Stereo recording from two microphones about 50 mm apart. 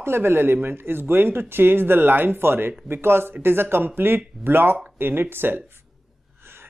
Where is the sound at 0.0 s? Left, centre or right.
Right.